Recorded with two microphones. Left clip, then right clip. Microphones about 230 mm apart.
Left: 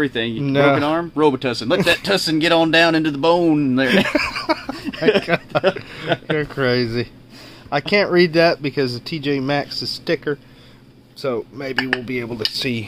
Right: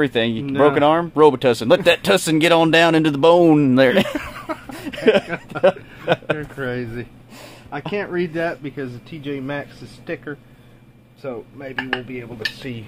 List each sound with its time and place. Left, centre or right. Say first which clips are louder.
0.0 s speech: right 2 dB; right
0.5 s speech: left 1 dB; left
0.7 s speech: right 4 dB; right
4.1 s speech: left 8 dB; left
4.7 s a sound: right 3 dB; right
6.3 s speech: left 7 dB; left